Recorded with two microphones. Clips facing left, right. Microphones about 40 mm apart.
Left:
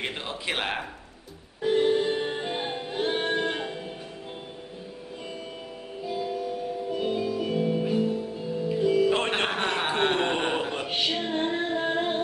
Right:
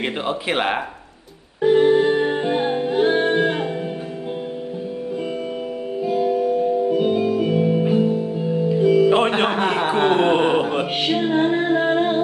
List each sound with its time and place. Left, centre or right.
0.0 s speech: right
1.6 s music: right
3.1 s music: right
6.0 s music: right
6.9 s music: right
9.3 s a sound: centre
9.8 s chuckle: centre
11.0 s music: right